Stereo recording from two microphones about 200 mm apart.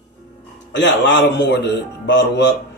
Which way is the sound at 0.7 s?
65° left (ahead or behind).